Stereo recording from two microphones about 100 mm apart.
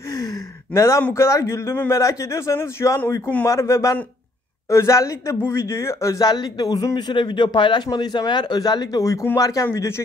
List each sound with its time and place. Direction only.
0.7 s speech: 30° left (ahead or behind)